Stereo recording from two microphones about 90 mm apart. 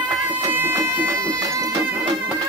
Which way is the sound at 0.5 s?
25° right (ahead or behind).